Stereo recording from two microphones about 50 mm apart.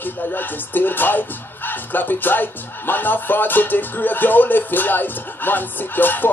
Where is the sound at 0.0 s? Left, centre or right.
Left.